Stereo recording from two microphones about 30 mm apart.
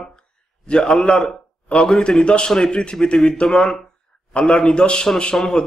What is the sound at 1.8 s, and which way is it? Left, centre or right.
A man's voice, left.